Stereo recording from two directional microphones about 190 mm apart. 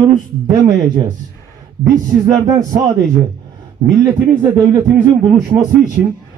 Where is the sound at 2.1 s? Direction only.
20° right (ahead or behind).